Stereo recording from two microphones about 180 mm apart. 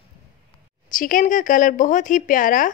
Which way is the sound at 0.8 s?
50° left (ahead or behind).